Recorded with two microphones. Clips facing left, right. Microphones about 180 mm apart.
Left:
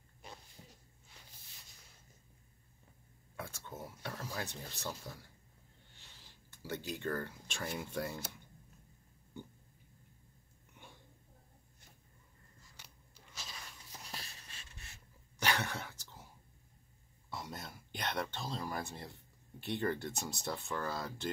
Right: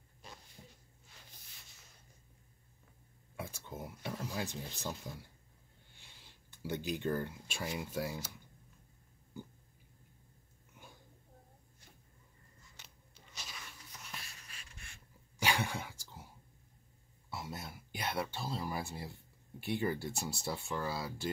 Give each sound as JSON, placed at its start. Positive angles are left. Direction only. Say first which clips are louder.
{"t": 3.3, "sound": "speech", "louder": "right 1 dB", "side_deg": -15}
{"t": 6.6, "sound": "speech", "louder": "right 3 dB", "side_deg": -15}
{"t": 12.8, "sound": "a sound", "louder": "even", "side_deg": 5}
{"t": 13.9, "sound": "writing", "louder": "left 2 dB", "side_deg": 35}
{"t": 15.3, "sound": "throat clearing", "louder": "right 1 dB", "side_deg": -10}
{"t": 17.3, "sound": "a sound", "louder": "right 1 dB", "side_deg": -5}
{"t": 19.6, "sound": "speech", "louder": "right 1 dB", "side_deg": -10}